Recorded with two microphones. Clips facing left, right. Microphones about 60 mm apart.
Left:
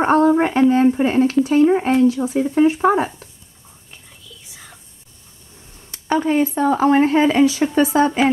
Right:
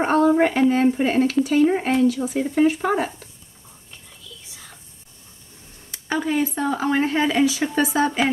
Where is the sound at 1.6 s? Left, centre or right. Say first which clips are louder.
Left 4 dB; left.